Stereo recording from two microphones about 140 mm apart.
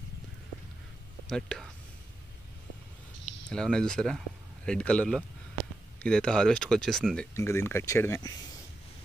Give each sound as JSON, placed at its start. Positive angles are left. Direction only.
{"t": 1.2, "sound": "speech", "side_deg": 5}
{"t": 3.4, "sound": "speech", "side_deg": 5}
{"t": 7.3, "sound": "speech", "side_deg": 20}